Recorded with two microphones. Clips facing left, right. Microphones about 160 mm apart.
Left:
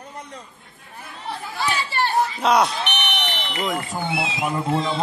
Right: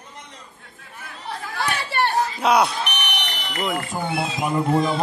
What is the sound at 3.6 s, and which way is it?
Speech, centre (ahead or behind).